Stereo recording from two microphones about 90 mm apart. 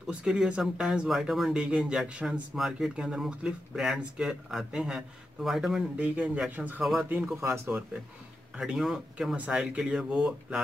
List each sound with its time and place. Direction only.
0.0 s speech: 10° right (ahead or behind)
5.9 s speech: 20° right (ahead or behind)
6.8 s speech: 5° right (ahead or behind)
7.3 s speech: 30° right (ahead or behind)
8.5 s speech: 5° right (ahead or behind)